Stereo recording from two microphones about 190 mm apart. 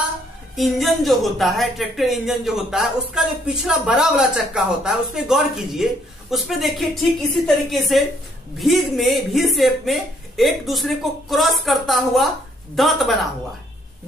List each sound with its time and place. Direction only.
0.6 s speech: centre (ahead or behind)